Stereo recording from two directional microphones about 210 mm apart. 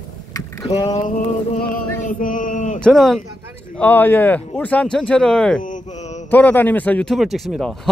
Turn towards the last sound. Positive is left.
turn(degrees=0)  # may be behind; listen again after turning